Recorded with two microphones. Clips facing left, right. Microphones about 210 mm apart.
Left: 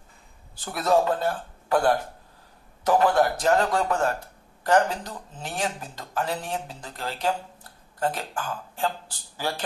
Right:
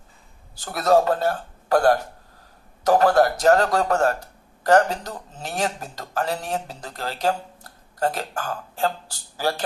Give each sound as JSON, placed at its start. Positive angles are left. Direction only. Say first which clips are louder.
{"t": 0.7, "sound": "speech", "louder": "right 4 dB", "side_deg": -40}